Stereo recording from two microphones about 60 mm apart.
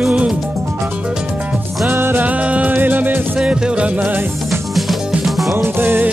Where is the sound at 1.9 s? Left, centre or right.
Right.